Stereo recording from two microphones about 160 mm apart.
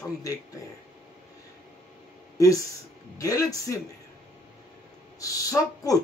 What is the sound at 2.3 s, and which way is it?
Speech, 20° left (ahead or behind).